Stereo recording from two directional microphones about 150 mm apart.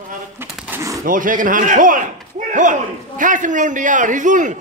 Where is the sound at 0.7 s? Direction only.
20° right (ahead or behind).